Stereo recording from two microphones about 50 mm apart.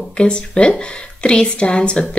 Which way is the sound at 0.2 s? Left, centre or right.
Centre.